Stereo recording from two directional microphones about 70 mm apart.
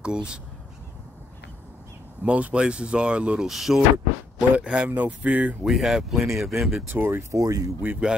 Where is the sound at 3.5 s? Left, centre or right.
Centre.